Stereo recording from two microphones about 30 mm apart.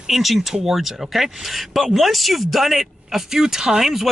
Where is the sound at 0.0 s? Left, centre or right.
Centre.